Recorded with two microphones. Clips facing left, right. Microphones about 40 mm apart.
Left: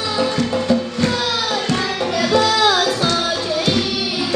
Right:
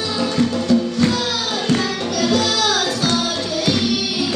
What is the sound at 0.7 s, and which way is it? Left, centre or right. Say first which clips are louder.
Music: right 1 dB; centre.